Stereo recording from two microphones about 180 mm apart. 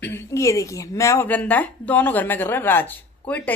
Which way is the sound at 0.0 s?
15° left (ahead or behind).